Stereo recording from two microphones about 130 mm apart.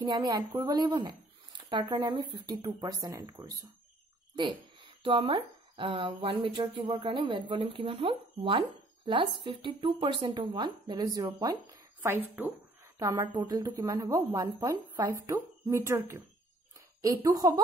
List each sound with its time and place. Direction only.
0.0 s speech: 35° right (ahead or behind)
4.4 s speech: 40° right (ahead or behind)
13.3 s speech: 40° right (ahead or behind)
13.6 s speech: 25° right (ahead or behind)